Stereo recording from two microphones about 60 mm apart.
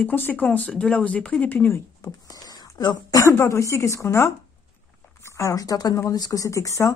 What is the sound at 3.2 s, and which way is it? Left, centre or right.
Speech, left.